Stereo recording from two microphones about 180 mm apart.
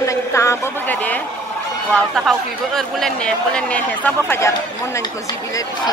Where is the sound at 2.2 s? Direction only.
Centre (ahead or behind).